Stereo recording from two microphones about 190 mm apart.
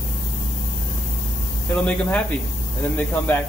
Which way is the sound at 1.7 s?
5° left (ahead or behind).